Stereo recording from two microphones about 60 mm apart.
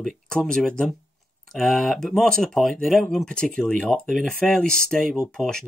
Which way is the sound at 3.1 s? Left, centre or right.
Centre.